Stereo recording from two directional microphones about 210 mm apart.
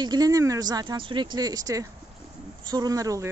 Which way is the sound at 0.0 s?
20° right (ahead or behind).